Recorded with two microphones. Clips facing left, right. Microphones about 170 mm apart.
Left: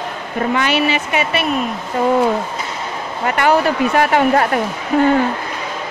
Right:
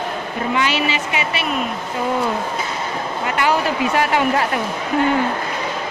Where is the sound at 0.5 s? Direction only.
55° left (ahead or behind).